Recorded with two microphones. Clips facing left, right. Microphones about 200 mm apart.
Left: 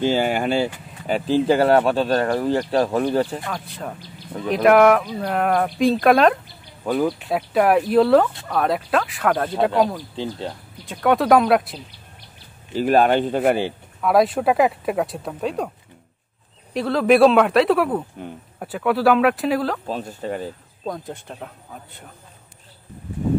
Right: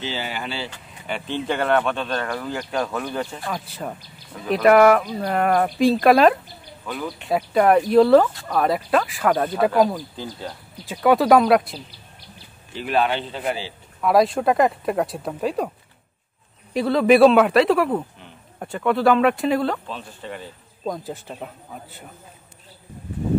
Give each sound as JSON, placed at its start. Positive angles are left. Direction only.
{"t": 0.0, "sound": "speech", "side_deg": 50}
{"t": 1.0, "sound": "speech", "side_deg": 35}
{"t": 3.4, "sound": "speech", "side_deg": -5}
{"t": 6.8, "sound": "speech", "side_deg": 40}
{"t": 7.2, "sound": "speech", "side_deg": 0}
{"t": 10.1, "sound": "speech", "side_deg": 25}
{"t": 10.9, "sound": "speech", "side_deg": 0}
{"t": 12.7, "sound": "speech", "side_deg": 45}
{"t": 14.0, "sound": "speech", "side_deg": 0}
{"t": 16.7, "sound": "speech", "side_deg": 0}
{"t": 19.9, "sound": "speech", "side_deg": 40}
{"t": 20.8, "sound": "speech", "side_deg": 0}